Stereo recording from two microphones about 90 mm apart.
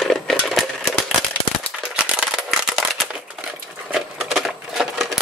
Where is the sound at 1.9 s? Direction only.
10° right (ahead or behind).